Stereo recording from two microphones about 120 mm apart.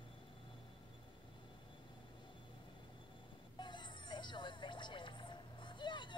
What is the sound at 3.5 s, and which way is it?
Music, 40° left (ahead or behind).